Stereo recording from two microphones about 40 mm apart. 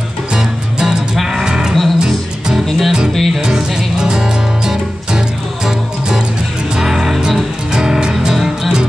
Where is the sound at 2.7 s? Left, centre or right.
Centre.